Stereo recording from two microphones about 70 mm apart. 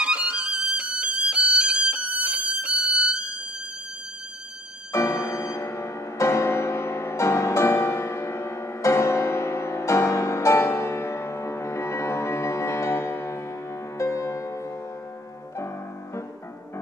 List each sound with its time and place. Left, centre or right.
0.0 s violin: centre
4.9 s music: left